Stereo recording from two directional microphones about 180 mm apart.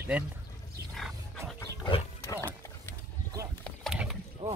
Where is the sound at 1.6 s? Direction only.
25° left (ahead or behind).